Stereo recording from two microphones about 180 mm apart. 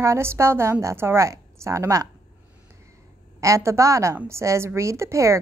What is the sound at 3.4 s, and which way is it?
A woman's voice, 15° right (ahead or behind).